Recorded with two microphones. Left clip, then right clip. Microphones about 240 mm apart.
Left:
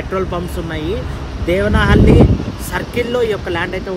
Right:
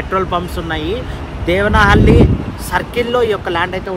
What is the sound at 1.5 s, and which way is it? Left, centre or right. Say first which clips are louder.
Speech: right 3 dB; centre.